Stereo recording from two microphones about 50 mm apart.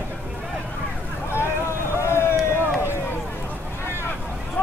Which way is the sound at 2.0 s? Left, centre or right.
Left.